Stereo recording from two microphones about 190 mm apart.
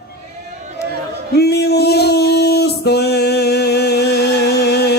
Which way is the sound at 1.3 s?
60° left (ahead or behind).